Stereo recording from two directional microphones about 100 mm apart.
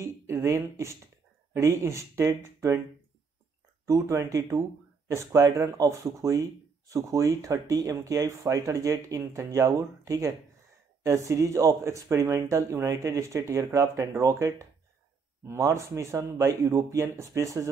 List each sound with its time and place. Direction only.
0.0 s a sound: 30° right (ahead or behind)
1.5 s speech: 25° right (ahead or behind)
3.8 s speech: 30° right (ahead or behind)